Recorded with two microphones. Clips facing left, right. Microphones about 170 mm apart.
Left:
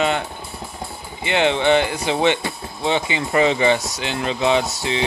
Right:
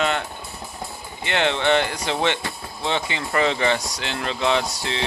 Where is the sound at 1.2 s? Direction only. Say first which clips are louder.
Left 4 dB; 10° left (ahead or behind).